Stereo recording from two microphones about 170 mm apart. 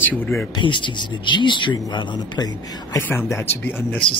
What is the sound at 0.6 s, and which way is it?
Speech, 30° left (ahead or behind).